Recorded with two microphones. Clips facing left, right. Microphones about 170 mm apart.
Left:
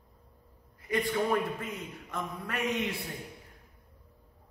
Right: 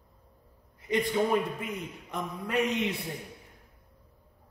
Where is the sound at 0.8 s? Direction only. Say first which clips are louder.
Right 3 dB; 20° right (ahead or behind).